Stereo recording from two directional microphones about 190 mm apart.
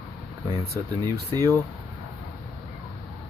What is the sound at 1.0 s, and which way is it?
Speech, 20° right (ahead or behind).